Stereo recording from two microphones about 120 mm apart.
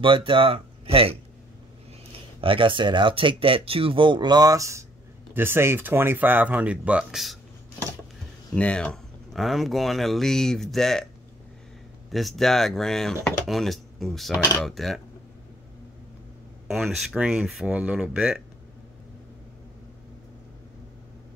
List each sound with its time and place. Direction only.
0.0 s speech: 45° right (ahead or behind)
2.4 s speech: 45° right (ahead or behind); by 7.3 s 5° right (ahead or behind)
8.5 s speech: 10° left (ahead or behind)
12.1 s speech: centre (ahead or behind)
16.6 s speech: 5° right (ahead or behind)